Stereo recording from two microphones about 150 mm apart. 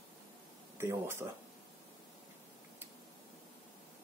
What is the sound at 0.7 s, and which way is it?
Speech, 15° right (ahead or behind).